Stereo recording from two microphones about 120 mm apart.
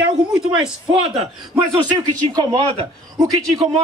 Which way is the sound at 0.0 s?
5° right (ahead or behind).